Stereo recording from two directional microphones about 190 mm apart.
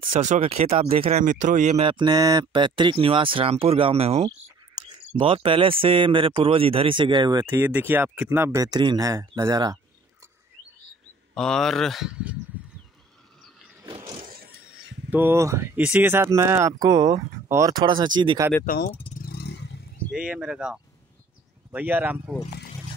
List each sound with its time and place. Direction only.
0.1 s speech: 35° right (ahead or behind); by 9.8 s 20° right (ahead or behind)
11.3 s speech: 5° left (ahead or behind)
13.8 s vehicle: 25° right (ahead or behind)
15.0 s speech: 10° right (ahead or behind)
18.7 s vehicle: 50° left (ahead or behind)
20.1 s speech: 5° right (ahead or behind)